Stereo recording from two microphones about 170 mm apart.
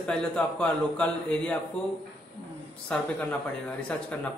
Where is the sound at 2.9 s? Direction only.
5° left (ahead or behind).